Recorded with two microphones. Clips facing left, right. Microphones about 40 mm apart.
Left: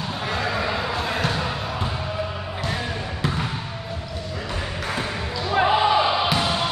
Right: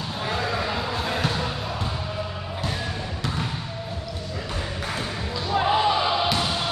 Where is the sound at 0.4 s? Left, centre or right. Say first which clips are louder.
Left 3 dB; centre.